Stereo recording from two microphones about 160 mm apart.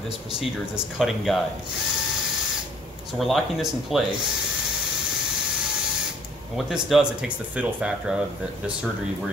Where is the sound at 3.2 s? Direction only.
Centre (ahead or behind).